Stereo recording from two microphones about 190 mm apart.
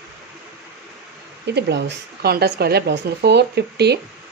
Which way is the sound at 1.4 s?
65° right (ahead or behind).